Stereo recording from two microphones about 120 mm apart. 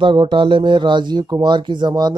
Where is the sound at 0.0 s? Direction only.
40° right (ahead or behind).